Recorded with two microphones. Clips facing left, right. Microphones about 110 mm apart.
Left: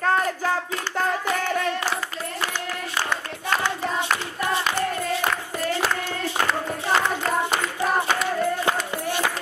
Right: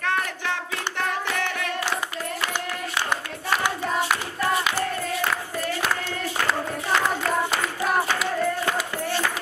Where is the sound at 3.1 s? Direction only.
15° right (ahead or behind).